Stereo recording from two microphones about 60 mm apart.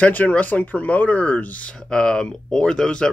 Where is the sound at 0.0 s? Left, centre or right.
Left.